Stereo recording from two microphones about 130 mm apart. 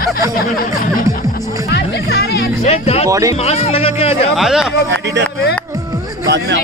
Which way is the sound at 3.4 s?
50° left (ahead or behind).